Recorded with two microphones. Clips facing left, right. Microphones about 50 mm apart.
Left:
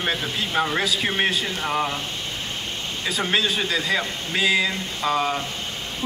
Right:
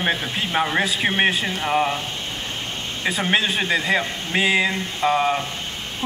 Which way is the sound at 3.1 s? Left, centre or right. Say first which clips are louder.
Right 2 dB; right.